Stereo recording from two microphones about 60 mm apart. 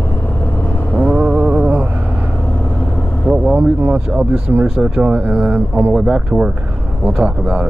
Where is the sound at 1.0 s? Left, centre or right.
Right.